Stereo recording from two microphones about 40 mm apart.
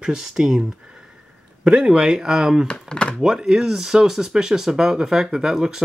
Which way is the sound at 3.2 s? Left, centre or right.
Centre.